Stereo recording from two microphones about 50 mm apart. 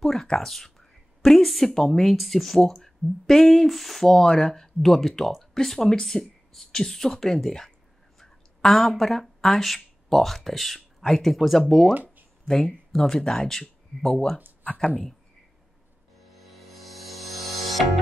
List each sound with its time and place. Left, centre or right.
0.0 s speech: centre
11.9 s a sound: right
12.9 s speech: centre
16.3 s music: centre